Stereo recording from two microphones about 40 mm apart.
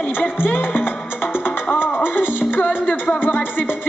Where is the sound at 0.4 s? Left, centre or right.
Left.